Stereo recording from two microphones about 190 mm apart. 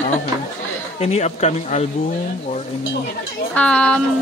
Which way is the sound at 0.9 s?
35° left (ahead or behind).